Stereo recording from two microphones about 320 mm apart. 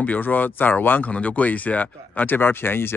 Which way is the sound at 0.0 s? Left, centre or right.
Centre.